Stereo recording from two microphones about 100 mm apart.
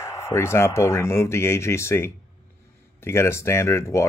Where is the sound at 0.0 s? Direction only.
30° left (ahead or behind).